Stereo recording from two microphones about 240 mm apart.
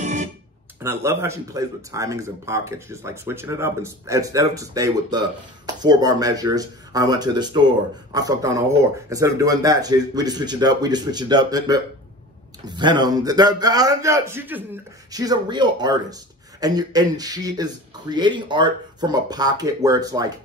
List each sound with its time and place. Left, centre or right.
0.0 s music: right
0.8 s a man's voice: centre